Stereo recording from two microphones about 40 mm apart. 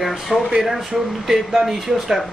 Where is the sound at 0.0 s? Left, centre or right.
Centre.